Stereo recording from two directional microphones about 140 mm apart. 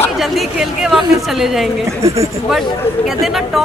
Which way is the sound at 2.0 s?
20° right (ahead or behind).